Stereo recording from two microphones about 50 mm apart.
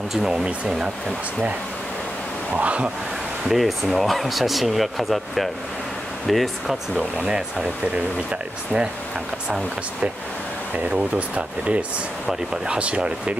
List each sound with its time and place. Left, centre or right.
2.5 s speech: right
3.4 s speech: centre
7.2 s speech: centre
10.9 s speech: right